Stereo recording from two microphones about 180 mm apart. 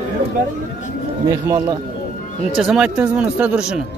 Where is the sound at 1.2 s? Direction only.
15° right (ahead or behind).